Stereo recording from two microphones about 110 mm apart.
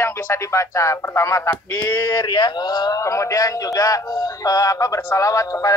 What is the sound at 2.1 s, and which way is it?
A man's voice, 40° left (ahead or behind).